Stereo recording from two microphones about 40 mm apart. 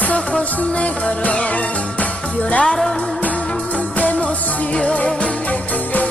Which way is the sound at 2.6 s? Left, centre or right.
Centre.